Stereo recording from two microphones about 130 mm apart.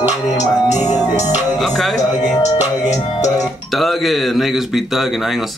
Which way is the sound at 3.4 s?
Centre (ahead or behind).